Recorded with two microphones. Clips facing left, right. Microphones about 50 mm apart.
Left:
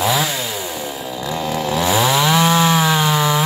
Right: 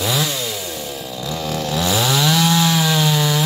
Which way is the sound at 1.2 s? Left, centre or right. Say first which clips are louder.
Left 3 dB; centre.